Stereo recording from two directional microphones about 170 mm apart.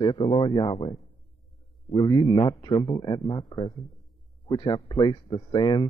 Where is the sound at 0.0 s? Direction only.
30° left (ahead or behind).